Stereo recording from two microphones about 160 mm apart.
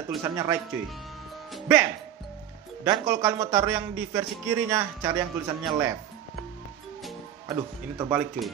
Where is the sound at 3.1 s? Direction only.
15° right (ahead or behind).